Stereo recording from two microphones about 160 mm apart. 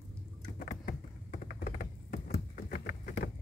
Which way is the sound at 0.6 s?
60° left (ahead or behind).